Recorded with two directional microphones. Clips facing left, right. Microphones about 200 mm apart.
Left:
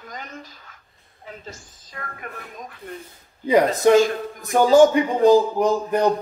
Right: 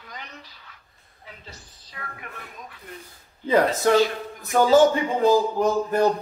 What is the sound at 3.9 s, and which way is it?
Speech, 45° left (ahead or behind).